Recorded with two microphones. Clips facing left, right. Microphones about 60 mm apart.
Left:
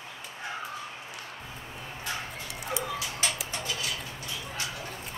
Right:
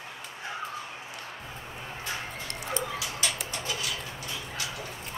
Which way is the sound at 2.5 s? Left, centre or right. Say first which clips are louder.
Right 1 dB; centre.